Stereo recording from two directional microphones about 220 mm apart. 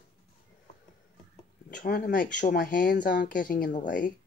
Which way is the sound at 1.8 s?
40° left (ahead or behind).